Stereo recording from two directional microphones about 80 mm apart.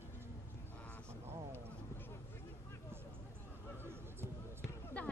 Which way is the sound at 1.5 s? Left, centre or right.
Left.